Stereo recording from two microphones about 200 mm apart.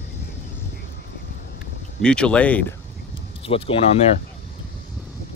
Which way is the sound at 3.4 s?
30° left (ahead or behind).